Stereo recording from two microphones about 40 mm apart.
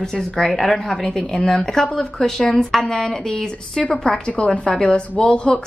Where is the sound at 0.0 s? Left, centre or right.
Centre.